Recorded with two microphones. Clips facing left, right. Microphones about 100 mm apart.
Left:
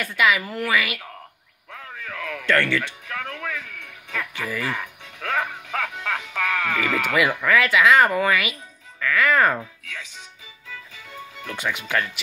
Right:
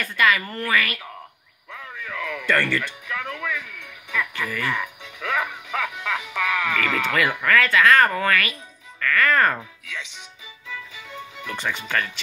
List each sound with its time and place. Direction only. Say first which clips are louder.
0.0 s speech: even; 5° left (ahead or behind)
2.0 s music: even; 15° right (ahead or behind)
6.8 s speech: left 3 dB; 10° left (ahead or behind)
9.8 s speech: right 2 dB; 20° right (ahead or behind)
10.9 s music: right 2 dB; 15° right (ahead or behind)
11.5 s speech: left 1 dB; 5° left (ahead or behind)